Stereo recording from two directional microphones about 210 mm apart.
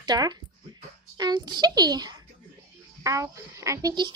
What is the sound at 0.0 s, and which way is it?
A child's voice, 20° right (ahead or behind).